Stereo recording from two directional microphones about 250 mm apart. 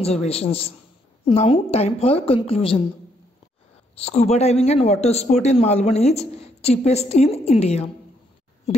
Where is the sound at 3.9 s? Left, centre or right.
Left.